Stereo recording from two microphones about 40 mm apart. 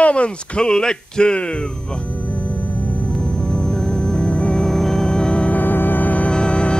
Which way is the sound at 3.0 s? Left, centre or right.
Left.